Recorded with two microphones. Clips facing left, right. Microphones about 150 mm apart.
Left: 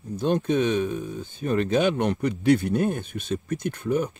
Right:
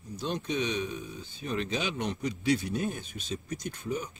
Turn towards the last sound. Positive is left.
turn(degrees=60)  # may be behind; listen again after turning